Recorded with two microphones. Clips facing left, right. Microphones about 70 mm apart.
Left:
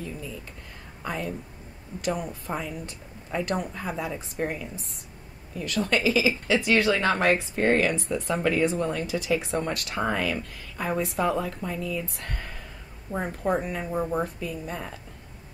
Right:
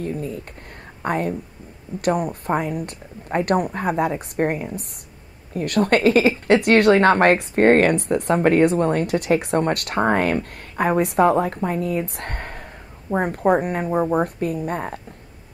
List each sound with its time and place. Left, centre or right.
0.0 s a woman's voice: right